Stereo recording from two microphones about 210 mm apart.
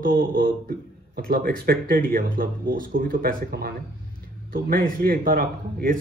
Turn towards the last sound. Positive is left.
turn(degrees=-40)  # may be behind; listen again after turning